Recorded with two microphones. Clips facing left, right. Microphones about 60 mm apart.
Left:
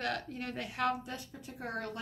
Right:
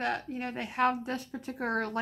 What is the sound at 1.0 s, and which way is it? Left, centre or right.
Speech, right.